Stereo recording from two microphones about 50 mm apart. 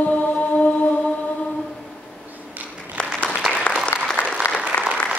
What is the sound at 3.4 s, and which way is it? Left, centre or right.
Applause, centre.